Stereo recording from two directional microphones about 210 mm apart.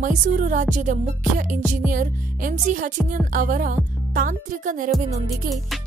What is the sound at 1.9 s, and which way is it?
Speech, 40° right (ahead or behind).